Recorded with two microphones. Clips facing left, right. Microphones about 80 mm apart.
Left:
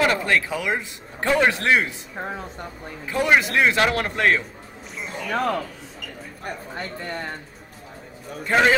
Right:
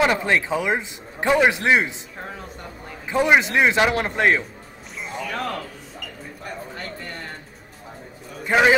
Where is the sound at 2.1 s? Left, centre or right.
Left.